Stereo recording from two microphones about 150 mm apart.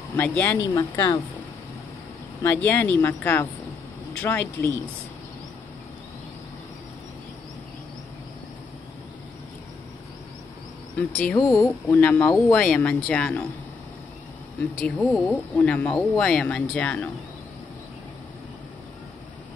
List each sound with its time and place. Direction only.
0.1 s speech: 15° left (ahead or behind)
2.4 s speech: 15° left (ahead or behind)
11.0 s speech: 10° left (ahead or behind)
11.3 s speech: 25° left (ahead or behind)
11.9 s speech: 10° left (ahead or behind)
14.8 s speech: 5° left (ahead or behind)